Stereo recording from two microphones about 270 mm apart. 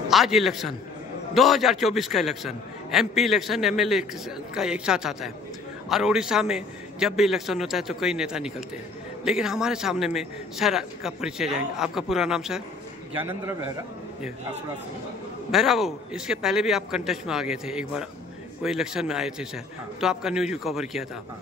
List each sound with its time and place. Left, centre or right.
0.1 s a man's voice: centre
15.5 s a man's voice: centre